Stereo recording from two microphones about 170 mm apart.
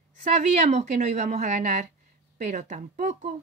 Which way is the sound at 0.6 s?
45° right (ahead or behind).